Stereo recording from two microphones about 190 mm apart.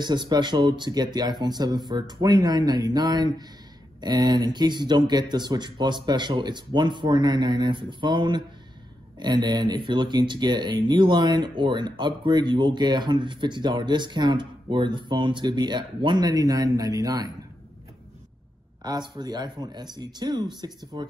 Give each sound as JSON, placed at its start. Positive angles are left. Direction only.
{"t": 0.0, "sound": "speech", "side_deg": -25}
{"t": 18.8, "sound": "speech", "side_deg": -20}